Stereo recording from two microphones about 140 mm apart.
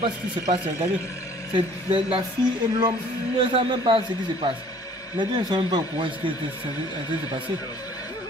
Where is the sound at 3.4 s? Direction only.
35° right (ahead or behind).